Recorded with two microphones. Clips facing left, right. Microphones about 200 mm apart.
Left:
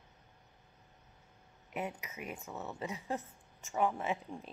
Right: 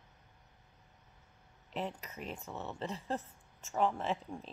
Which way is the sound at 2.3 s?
Centre (ahead or behind).